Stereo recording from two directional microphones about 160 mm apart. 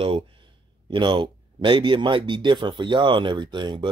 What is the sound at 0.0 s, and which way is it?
Speech, 35° right (ahead or behind).